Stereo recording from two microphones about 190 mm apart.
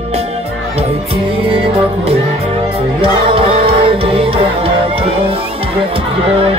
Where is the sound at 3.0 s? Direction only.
30° right (ahead or behind).